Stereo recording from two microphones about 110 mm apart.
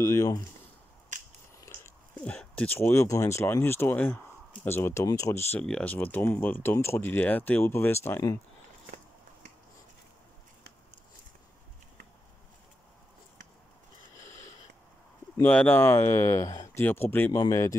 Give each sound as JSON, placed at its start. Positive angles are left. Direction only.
{"t": 0.0, "sound": "speech", "side_deg": 30}
{"t": 1.7, "sound": "biting", "side_deg": 30}
{"t": 2.2, "sound": "speech", "side_deg": 15}
{"t": 5.6, "sound": "speech", "side_deg": 10}
{"t": 14.2, "sound": "a sound", "side_deg": 25}
{"t": 15.4, "sound": "speech", "side_deg": 15}
{"t": 16.8, "sound": "speech", "side_deg": 20}